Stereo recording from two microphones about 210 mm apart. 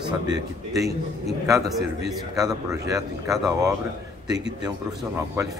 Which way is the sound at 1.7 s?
Centre (ahead or behind).